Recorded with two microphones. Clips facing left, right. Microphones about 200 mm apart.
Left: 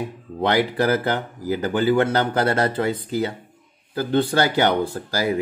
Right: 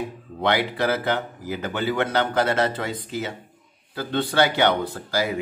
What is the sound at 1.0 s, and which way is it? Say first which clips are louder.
A man's voice: left 2 dB; 35° left (ahead or behind).